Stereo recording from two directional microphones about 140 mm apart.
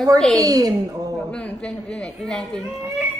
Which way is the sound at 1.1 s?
5° left (ahead or behind).